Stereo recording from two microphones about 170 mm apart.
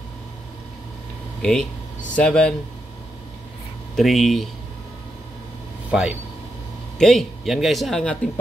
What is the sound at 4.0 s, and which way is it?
Speech, centre (ahead or behind).